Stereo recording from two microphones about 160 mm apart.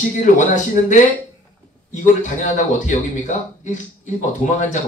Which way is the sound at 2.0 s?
50° left (ahead or behind).